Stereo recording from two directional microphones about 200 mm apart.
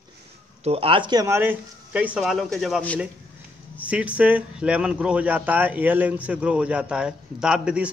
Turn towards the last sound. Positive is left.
turn(degrees=-5)  # may be behind; listen again after turning